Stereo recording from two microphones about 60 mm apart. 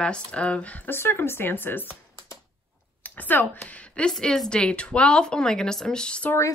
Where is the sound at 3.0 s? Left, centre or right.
Left.